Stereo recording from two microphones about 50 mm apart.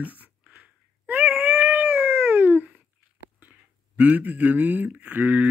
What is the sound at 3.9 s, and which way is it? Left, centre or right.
Speech, right.